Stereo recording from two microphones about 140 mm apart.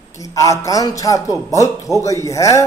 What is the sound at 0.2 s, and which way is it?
Speech, 25° left (ahead or behind).